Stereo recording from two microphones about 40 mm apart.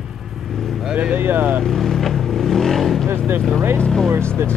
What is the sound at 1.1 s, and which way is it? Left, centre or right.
Vehicle, right.